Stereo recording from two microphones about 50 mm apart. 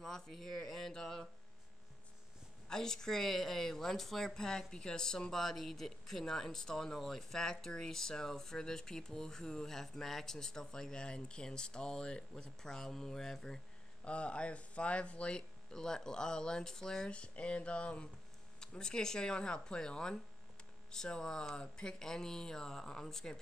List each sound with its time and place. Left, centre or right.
0.0 s speech: centre
2.7 s speech: centre
14.0 s speech: left
17.1 s speech: left